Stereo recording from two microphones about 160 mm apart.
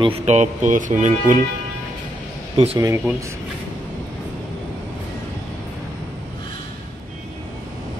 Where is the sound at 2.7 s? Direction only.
20° right (ahead or behind).